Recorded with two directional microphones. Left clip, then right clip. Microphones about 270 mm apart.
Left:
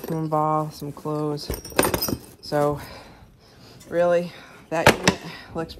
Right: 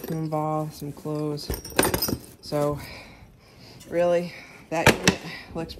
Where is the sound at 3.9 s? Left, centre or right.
Centre.